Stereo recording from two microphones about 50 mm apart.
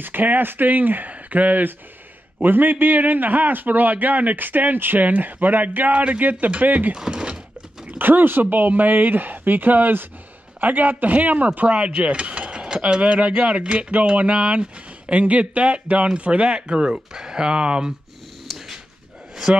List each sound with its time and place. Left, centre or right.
0.0 s a man's voice: right
7.0 s speech: centre
8.0 s a man's voice: right; by 17.9 s centre
18.5 s a sound: centre